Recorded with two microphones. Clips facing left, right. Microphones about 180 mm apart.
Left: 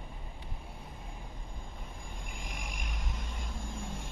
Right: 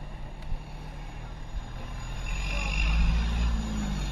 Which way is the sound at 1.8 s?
75° right (ahead or behind).